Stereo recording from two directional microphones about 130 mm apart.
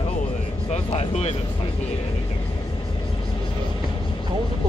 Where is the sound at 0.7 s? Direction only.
55° left (ahead or behind).